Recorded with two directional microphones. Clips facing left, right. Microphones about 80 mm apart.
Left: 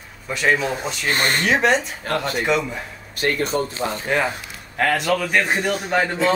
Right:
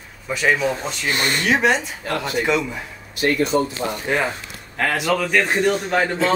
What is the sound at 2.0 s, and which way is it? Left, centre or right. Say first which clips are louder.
Speech: left 1 dB; left.